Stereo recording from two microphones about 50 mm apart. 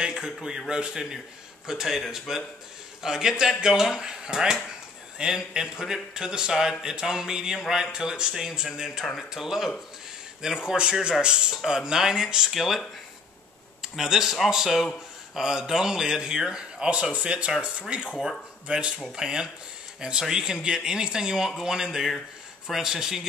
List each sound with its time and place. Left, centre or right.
0.0 s speech: centre
13.9 s speech: centre